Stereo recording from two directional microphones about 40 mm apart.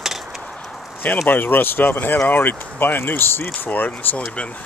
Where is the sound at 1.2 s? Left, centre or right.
Left.